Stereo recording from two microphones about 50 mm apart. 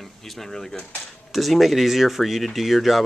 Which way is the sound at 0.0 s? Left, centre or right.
Centre.